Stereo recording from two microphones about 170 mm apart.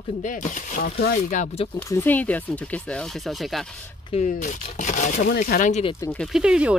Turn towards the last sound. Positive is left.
turn(degrees=-5)  # may be behind; listen again after turning